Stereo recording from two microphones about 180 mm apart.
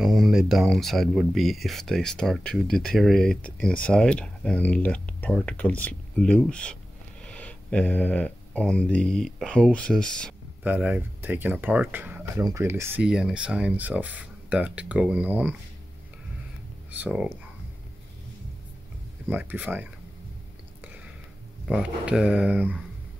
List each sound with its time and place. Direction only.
0.0 s speech: centre (ahead or behind)
10.6 s speech: 10° right (ahead or behind)
16.9 s speech: 5° right (ahead or behind)
19.2 s speech: 10° right (ahead or behind)
21.6 s speech: 5° right (ahead or behind)